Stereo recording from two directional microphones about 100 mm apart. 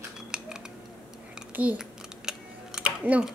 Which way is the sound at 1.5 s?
10° right (ahead or behind).